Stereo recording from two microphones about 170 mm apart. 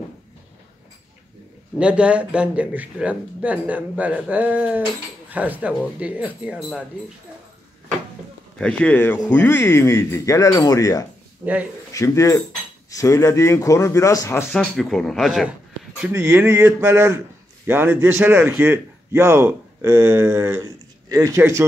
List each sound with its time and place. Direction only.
1.8 s a man's voice: 5° right (ahead or behind)
8.5 s speech: 5° left (ahead or behind)
14.5 s a man's voice: 5° left (ahead or behind); by 21.6 s 15° right (ahead or behind)